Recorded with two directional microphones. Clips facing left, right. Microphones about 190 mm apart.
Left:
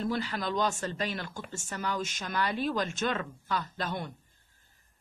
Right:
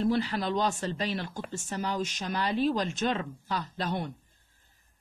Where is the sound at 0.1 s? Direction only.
40° right (ahead or behind).